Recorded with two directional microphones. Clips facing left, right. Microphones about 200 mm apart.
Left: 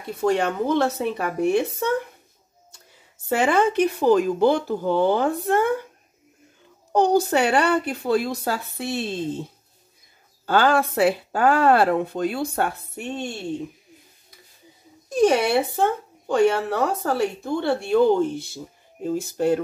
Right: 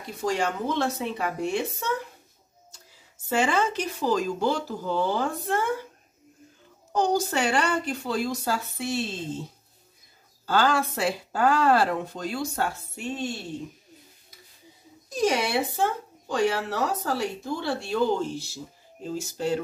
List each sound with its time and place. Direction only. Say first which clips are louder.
0.0 s speech: left 5 dB; 60° left (ahead or behind)
3.3 s speech: left 5 dB; 55° left (ahead or behind)
6.9 s speech: left 6 dB; 60° left (ahead or behind)
10.4 s speech: left 4 dB; 60° left (ahead or behind)
15.0 s speech: left 7 dB; 55° left (ahead or behind)